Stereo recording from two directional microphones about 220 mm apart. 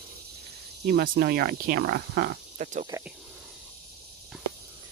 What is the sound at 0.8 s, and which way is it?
Speech, 45° right (ahead or behind).